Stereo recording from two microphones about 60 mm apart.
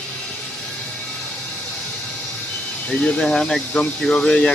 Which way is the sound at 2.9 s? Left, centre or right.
Centre.